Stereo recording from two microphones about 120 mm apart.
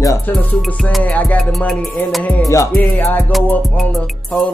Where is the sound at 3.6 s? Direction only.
Centre (ahead or behind).